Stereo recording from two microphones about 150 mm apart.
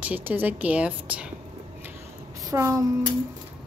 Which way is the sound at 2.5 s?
20° right (ahead or behind).